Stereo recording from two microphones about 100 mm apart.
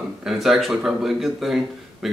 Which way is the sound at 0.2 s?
5° right (ahead or behind).